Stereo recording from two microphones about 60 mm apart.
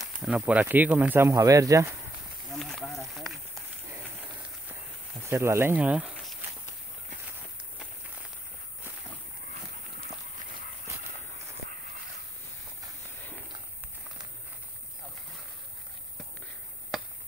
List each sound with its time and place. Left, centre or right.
0.3 s speech: right
1.3 s speech: right
2.5 s snake: centre
5.3 s speech: right
5.8 s speech: right